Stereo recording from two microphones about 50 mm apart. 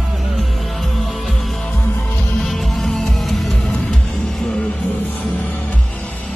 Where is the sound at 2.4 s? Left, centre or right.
Centre.